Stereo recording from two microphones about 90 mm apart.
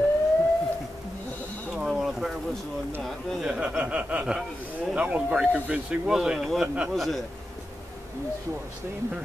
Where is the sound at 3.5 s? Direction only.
10° right (ahead or behind).